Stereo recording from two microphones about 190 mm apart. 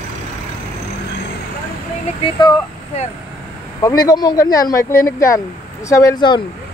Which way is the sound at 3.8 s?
20° left (ahead or behind).